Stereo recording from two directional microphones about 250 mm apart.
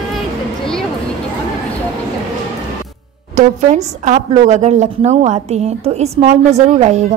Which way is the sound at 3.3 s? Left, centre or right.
Right.